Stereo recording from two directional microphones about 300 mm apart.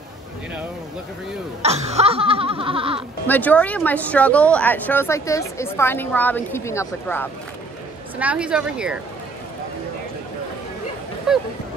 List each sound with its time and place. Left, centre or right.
1.6 s laughter: right
3.3 s speech: centre
8.2 s speech: centre
11.3 s speech: centre